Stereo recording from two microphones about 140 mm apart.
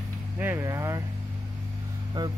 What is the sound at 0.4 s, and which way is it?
Speech, 15° right (ahead or behind).